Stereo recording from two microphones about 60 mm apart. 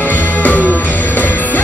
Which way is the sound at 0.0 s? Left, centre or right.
Left.